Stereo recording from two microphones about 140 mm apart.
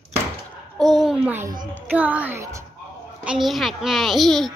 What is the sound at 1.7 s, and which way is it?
Music, 10° right (ahead or behind).